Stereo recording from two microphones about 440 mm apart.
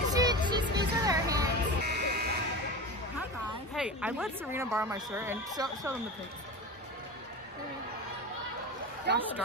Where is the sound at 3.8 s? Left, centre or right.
Centre.